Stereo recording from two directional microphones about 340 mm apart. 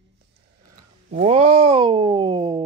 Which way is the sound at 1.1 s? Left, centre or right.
Centre.